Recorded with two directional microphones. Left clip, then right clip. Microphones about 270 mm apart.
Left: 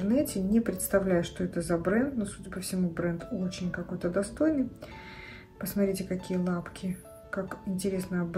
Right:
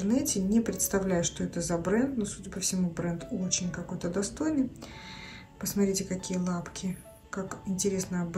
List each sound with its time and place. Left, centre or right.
0.1 s speech: centre
5.6 s speech: centre